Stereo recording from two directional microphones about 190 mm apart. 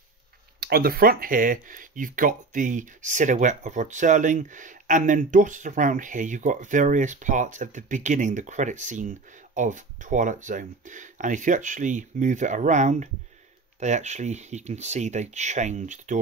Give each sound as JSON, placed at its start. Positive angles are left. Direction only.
{"t": 0.6, "sound": "speech", "side_deg": -55}